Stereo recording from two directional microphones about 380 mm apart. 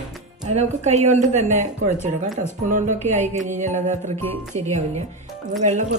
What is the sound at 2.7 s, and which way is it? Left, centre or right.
Speech, centre.